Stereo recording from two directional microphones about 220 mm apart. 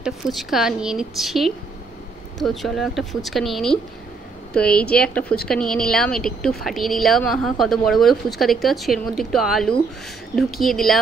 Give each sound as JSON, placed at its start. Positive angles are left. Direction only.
{"t": 0.0, "sound": "a woman's voice", "side_deg": 0}